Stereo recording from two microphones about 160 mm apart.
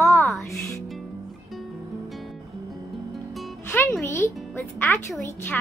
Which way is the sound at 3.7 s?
15° left (ahead or behind).